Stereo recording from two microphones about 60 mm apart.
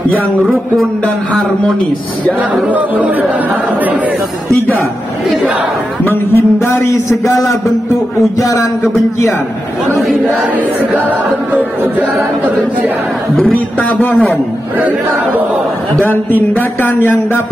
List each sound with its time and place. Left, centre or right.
2.7 s speech: right
6.0 s a man's voice: left
13.5 s speech: left
16.3 s speech: left